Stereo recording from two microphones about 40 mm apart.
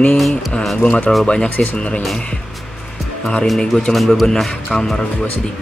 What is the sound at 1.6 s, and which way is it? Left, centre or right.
Speech, left.